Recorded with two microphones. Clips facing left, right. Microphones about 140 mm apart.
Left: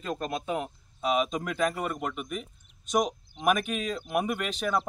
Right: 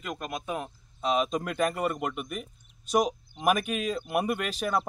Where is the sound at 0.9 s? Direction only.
Centre (ahead or behind).